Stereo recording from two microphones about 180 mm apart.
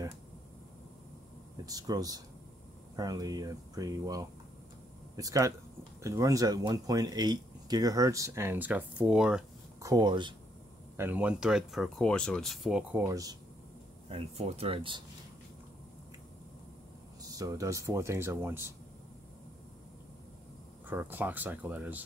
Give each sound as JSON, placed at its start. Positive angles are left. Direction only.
{"t": 1.7, "sound": "speech", "side_deg": -20}
{"t": 9.8, "sound": "speech", "side_deg": -20}
{"t": 11.0, "sound": "speech", "side_deg": -10}
{"t": 13.0, "sound": "speech", "side_deg": -20}
{"t": 14.0, "sound": "speech", "side_deg": -35}
{"t": 17.2, "sound": "speech", "side_deg": -20}
{"t": 20.9, "sound": "speech", "side_deg": -10}